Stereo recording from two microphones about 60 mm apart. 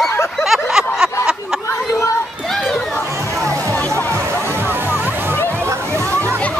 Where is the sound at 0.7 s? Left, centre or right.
Centre.